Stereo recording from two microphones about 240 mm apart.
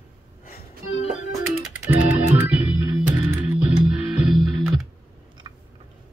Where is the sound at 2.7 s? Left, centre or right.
Centre.